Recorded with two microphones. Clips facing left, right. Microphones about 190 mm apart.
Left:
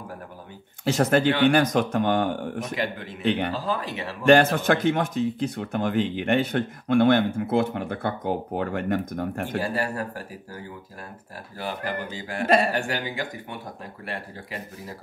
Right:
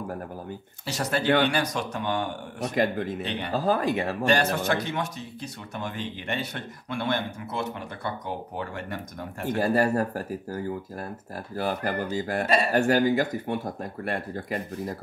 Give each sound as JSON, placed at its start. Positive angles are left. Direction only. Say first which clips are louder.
{"t": 0.8, "sound": "speech", "louder": "left 5 dB", "side_deg": 50}
{"t": 2.7, "sound": "speech", "louder": "right 4 dB", "side_deg": -45}
{"t": 4.3, "sound": "speech", "louder": "left 8 dB", "side_deg": 55}
{"t": 9.6, "sound": "speech", "louder": "right 6 dB", "side_deg": -45}